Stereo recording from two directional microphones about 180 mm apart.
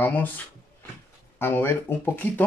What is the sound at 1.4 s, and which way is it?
Speech, 10° left (ahead or behind).